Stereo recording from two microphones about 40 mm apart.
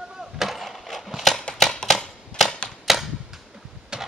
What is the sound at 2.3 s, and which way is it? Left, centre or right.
Typewriter, left.